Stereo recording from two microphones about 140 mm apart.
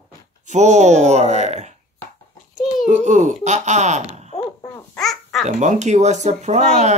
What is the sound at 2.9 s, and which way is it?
Speech, 55° right (ahead or behind).